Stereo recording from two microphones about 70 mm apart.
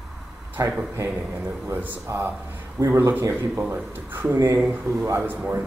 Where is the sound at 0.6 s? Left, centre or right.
Right.